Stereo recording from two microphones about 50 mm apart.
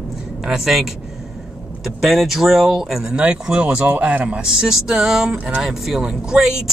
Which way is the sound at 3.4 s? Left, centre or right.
Right.